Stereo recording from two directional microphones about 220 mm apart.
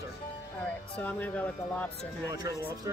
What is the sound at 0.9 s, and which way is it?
Speech, 5° left (ahead or behind).